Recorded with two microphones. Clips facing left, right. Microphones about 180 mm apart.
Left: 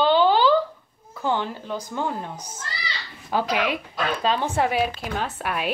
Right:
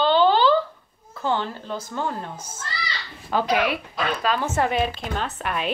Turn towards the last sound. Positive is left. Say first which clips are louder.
# even
turn(degrees=10)  # may be behind; listen again after turning